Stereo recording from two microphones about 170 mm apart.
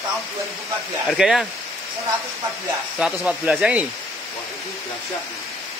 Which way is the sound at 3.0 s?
5° right (ahead or behind).